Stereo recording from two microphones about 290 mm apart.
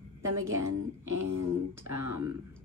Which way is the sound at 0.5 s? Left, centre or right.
Centre.